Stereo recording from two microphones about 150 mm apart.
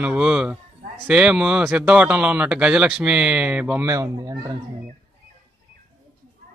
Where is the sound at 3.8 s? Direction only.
20° right (ahead or behind).